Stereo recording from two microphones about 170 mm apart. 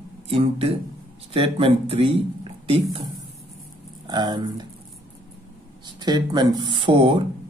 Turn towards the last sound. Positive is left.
turn(degrees=-30)  # may be behind; listen again after turning